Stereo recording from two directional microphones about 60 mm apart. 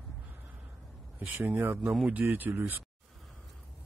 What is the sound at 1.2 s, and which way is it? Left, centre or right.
Speech, right.